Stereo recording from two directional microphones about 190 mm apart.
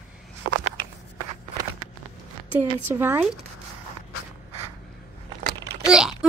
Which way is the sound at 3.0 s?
10° right (ahead or behind).